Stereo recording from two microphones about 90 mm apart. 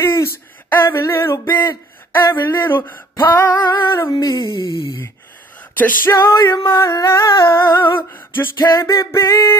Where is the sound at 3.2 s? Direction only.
35° left (ahead or behind); by 4.4 s 50° left (ahead or behind).